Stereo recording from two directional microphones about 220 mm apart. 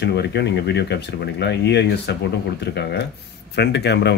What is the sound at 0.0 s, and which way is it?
Speech, 50° left (ahead or behind).